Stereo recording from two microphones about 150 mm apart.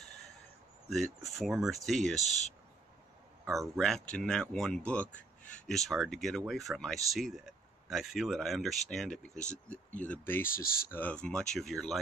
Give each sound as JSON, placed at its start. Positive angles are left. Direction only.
{"t": 0.8, "sound": "speech", "side_deg": 0}
{"t": 3.7, "sound": "speech", "side_deg": 0}
{"t": 10.5, "sound": "speech", "side_deg": 80}
{"t": 11.0, "sound": "speech", "side_deg": 10}